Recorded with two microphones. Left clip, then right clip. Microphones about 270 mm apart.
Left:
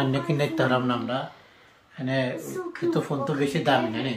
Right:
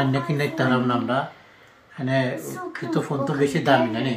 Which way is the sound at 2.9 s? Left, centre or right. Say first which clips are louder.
Right 7 dB; centre.